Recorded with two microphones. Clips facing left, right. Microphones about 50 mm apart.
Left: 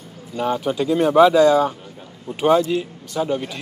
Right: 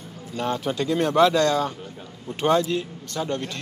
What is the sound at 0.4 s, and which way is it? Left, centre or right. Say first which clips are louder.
Speech: left 4 dB; centre.